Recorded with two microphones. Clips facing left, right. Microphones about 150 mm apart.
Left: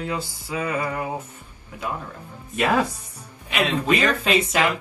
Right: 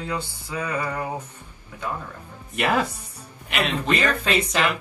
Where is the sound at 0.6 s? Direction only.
25° left (ahead or behind).